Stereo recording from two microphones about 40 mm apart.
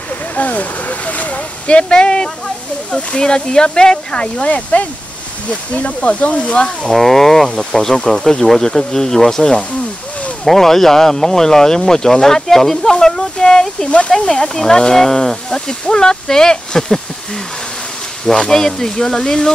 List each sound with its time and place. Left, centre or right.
0.4 s speech: left
6.9 s speech: centre
10.4 s speech: centre; by 14.1 s left
14.1 s speech: centre
18.2 s speech: centre